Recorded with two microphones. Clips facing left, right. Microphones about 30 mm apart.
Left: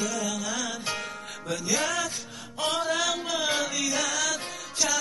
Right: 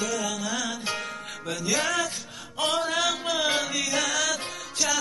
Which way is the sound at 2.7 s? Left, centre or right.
Centre.